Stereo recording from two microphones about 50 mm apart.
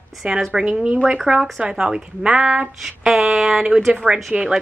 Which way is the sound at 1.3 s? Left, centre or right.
Centre.